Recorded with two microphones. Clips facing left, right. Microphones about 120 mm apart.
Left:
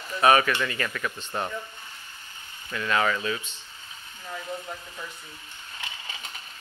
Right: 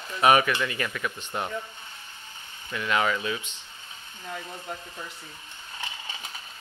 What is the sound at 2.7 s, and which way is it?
Speech, 15° right (ahead or behind).